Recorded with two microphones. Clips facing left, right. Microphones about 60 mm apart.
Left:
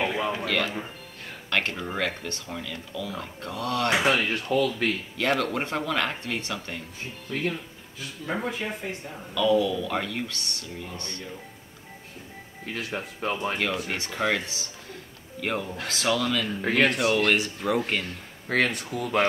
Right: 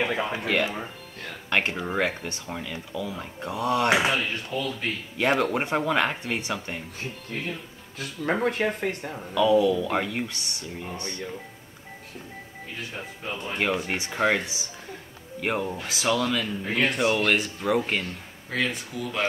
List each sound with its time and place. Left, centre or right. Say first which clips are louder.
0.5 s speech: right 2 dB; centre
4.0 s speech: left 2 dB; left
5.1 s speech: right 6 dB; centre
8.0 s speech: right 5 dB; right
9.3 s speech: right 3 dB; centre
12.6 s speech: left 5 dB; left
13.6 s speech: right 2 dB; centre
16.6 s speech: left 4 dB; left
16.9 s speech: even; centre
18.5 s speech: left 3 dB; left